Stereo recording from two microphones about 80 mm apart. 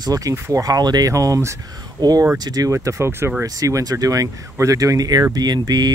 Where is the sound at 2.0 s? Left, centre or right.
Right.